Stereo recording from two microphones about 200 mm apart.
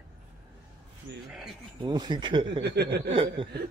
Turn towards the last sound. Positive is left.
turn(degrees=-25)  # may be behind; listen again after turning